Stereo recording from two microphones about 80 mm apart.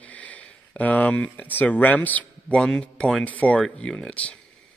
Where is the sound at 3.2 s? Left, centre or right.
Centre.